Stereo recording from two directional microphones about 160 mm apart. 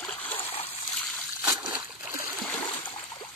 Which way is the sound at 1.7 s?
10° right (ahead or behind).